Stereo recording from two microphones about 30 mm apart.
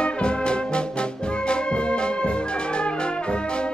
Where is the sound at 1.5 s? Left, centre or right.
Left.